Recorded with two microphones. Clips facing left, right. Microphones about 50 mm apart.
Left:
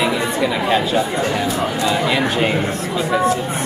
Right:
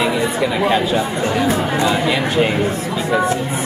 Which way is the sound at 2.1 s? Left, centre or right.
Centre.